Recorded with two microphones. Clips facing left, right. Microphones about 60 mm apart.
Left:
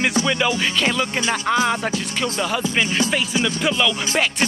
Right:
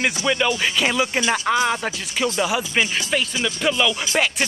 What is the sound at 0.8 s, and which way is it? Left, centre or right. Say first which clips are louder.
Music: right 1 dB; centre.